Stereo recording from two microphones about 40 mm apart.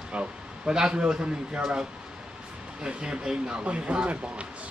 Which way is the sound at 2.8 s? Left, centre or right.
Right.